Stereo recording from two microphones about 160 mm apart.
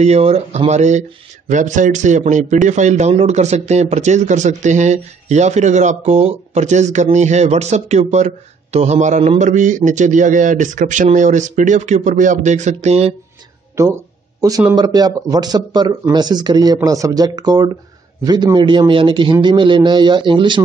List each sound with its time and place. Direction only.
0.0 s speech: 40° right (ahead or behind)
13.8 s speech: 20° right (ahead or behind)